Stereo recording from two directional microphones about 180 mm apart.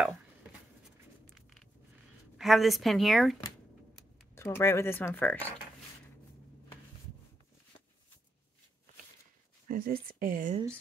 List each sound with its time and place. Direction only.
0.0 s chopping: 5° right (ahead or behind)
2.3 s speech: centre (ahead or behind)
4.4 s speech: 15° left (ahead or behind)
9.7 s speech: 55° right (ahead or behind)